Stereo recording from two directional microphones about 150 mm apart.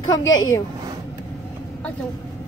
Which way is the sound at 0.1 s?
25° left (ahead or behind).